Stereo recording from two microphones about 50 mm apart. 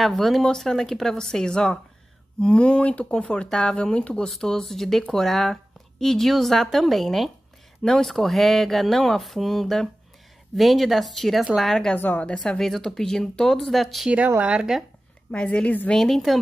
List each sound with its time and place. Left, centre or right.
0.0 s speech: centre
4.4 s speech: centre
12.1 s a woman's voice: left
12.4 s speech: centre
14.4 s speech: right
15.3 s speech: left
16.3 s speech: centre